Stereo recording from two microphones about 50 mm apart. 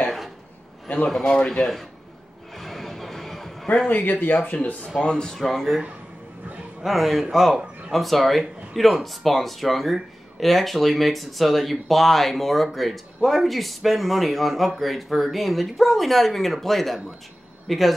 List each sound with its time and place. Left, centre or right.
0.8 s a man's voice: left; by 1.9 s centre
2.5 s music: centre
3.9 s speech: left
5.0 s speech: centre
6.8 s speech: centre